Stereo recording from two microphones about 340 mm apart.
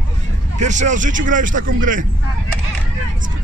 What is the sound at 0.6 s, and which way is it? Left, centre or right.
Speech, right.